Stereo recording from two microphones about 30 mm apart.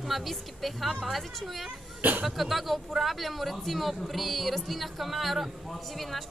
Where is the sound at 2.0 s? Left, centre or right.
Right.